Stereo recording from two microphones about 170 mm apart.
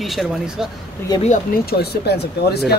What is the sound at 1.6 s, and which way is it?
Speech, 70° left (ahead or behind).